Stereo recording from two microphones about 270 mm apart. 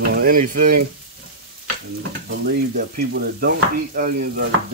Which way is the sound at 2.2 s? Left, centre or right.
Right.